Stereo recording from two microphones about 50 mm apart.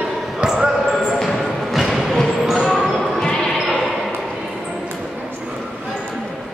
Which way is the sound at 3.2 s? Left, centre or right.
Centre.